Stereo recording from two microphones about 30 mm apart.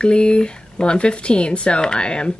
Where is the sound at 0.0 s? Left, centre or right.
Left.